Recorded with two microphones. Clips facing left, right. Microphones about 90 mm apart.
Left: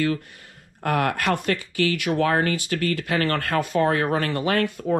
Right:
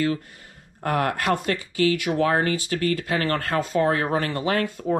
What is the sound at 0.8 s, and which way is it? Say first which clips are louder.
Speech: even; 25° right (ahead or behind).